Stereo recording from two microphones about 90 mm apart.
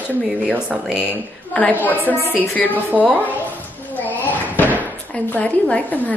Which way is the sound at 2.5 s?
20° left (ahead or behind).